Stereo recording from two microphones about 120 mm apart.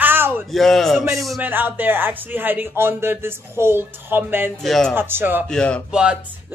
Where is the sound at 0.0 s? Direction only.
15° right (ahead or behind).